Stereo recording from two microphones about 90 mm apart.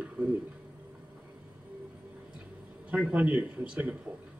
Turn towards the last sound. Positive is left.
turn(degrees=-15)  # may be behind; listen again after turning